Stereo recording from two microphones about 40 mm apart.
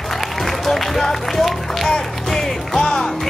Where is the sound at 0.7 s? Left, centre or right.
Centre.